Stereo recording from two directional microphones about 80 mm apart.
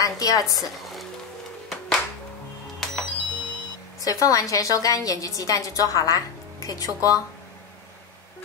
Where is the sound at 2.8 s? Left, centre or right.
Centre.